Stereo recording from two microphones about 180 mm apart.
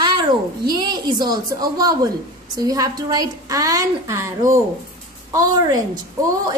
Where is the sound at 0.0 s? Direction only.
25° right (ahead or behind).